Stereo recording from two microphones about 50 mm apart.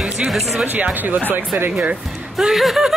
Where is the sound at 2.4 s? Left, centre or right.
Centre.